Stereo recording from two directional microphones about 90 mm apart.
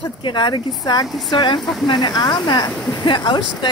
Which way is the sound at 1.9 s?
55° left (ahead or behind).